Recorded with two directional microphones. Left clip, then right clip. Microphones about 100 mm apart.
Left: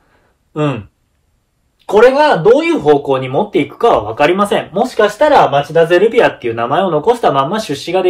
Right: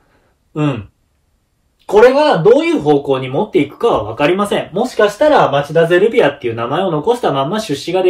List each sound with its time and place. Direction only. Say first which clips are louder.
0.5 s speech: left 2 dB; 35° left (ahead or behind)
2.0 s speech: left 1 dB; 20° left (ahead or behind)
2.6 s speech: left 2 dB; 40° left (ahead or behind)
4.9 s speech: left 1 dB; 25° left (ahead or behind)
5.7 s speech: left 1 dB; 45° left (ahead or behind)